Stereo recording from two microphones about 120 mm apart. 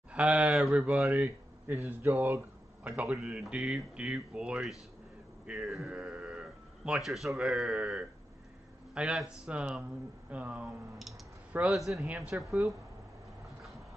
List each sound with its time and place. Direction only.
0.1 s a man's voice: 10° right (ahead or behind)